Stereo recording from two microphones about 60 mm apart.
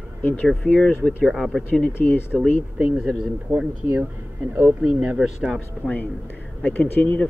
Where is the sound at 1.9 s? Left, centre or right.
Left.